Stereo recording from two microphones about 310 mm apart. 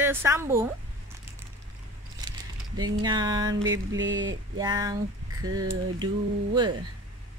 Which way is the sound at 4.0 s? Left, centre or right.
Right.